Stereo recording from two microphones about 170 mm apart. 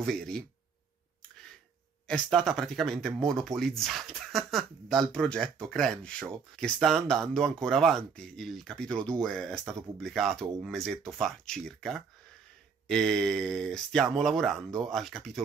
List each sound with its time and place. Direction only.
0.0 s speech: 5° left (ahead or behind)
2.0 s speech: centre (ahead or behind)